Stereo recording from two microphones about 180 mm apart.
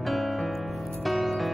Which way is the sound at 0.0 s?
Centre (ahead or behind).